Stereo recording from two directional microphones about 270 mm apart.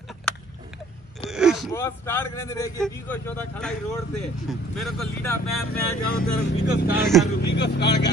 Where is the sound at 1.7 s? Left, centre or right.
Centre.